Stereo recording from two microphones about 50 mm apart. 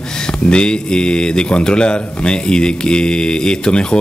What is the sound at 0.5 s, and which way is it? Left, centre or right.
Speech, centre.